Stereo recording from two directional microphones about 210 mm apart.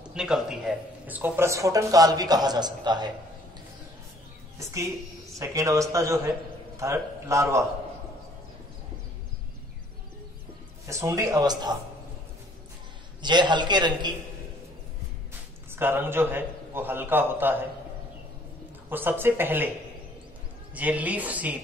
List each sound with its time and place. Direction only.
0.0 s speech: 5° right (ahead or behind); by 3.1 s 20° right (ahead or behind)
4.6 s a woman's voice: 15° right (ahead or behind)
10.9 s speech: 15° right (ahead or behind)
13.2 s a man's voice: 20° right (ahead or behind)
15.7 s speech: 10° right (ahead or behind)
18.9 s speech: 10° right (ahead or behind)
20.7 s speech: 5° right (ahead or behind)